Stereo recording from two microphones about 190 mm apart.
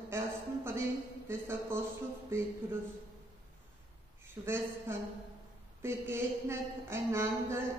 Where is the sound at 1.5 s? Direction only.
10° right (ahead or behind).